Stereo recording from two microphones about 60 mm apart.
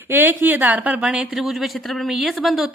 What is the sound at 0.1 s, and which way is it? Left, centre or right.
Speech, right.